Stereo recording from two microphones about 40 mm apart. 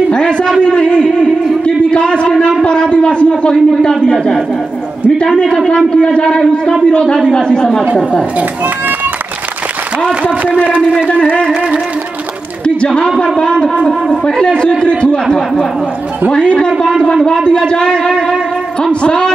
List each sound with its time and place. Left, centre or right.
0.1 s a sound: left
0.5 s a man's voice: left
1.6 s a sound: left
2.6 s a man's voice: left
5.2 s a man's voice: centre
12.6 s a man's voice: left
14.1 s a man's voice: centre
16.3 s a man's voice: left